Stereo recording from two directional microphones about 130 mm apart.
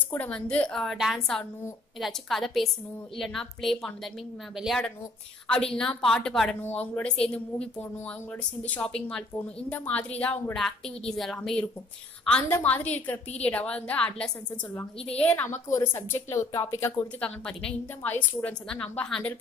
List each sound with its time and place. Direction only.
0.1 s a woman's voice: 10° left (ahead or behind)
17.2 s a woman's voice: 5° left (ahead or behind)